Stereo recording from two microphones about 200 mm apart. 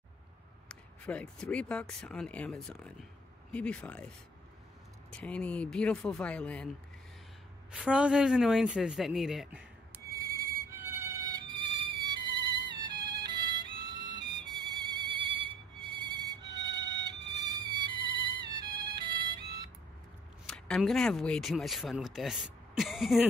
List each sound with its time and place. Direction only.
0.7 s speech: 5° left (ahead or behind)
5.1 s speech: 5° left (ahead or behind)
7.7 s speech: 5° right (ahead or behind)
10.8 s insect: 10° right (ahead or behind)
13.9 s music: 20° right (ahead or behind)
17.1 s emergency vehicle: 60° right (ahead or behind)
17.5 s music: 20° right (ahead or behind)
20.4 s speech: 5° left (ahead or behind)